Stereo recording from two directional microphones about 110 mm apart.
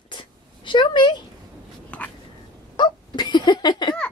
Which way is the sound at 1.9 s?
10° left (ahead or behind).